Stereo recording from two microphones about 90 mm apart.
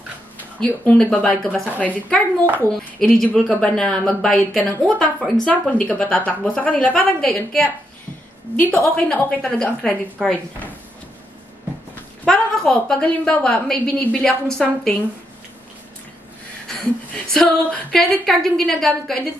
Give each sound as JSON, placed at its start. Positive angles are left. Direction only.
{"t": 0.6, "sound": "a woman's voice", "side_deg": 15}
{"t": 1.7, "sound": "a woman's voice", "side_deg": -20}
{"t": 3.0, "sound": "a woman's voice", "side_deg": 5}
{"t": 8.5, "sound": "a woman's voice", "side_deg": 20}
{"t": 10.2, "sound": "a woman's voice", "side_deg": -5}
{"t": 12.3, "sound": "a woman's voice", "side_deg": 5}
{"t": 16.6, "sound": "a woman's voice", "side_deg": 10}